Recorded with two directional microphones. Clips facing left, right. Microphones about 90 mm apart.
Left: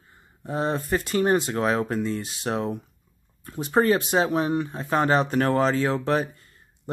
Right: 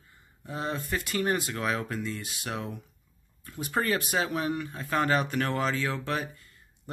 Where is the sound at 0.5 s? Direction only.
35° left (ahead or behind).